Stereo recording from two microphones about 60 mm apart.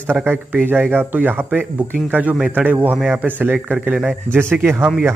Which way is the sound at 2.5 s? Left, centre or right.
Right.